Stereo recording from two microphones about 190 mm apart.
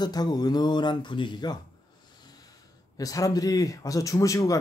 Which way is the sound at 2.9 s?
20° left (ahead or behind).